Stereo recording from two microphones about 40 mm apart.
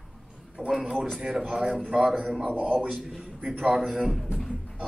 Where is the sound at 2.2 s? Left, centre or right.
Centre.